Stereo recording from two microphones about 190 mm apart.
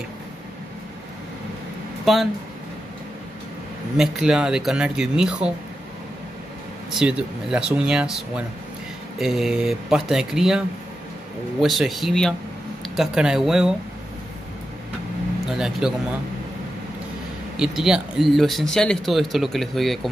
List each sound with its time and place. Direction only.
2.1 s speech: centre (ahead or behind)
3.9 s speech: centre (ahead or behind)
6.9 s speech: 5° right (ahead or behind)
11.6 s speech: centre (ahead or behind)
15.5 s speech: 5° right (ahead or behind)
17.6 s speech: 5° right (ahead or behind)